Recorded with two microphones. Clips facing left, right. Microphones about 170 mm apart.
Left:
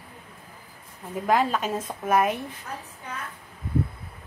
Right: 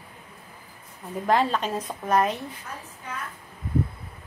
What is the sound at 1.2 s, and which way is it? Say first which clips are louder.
A woman's voice: even; 5° left (ahead or behind).